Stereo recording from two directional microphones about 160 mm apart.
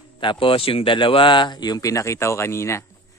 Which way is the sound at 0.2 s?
30° left (ahead or behind).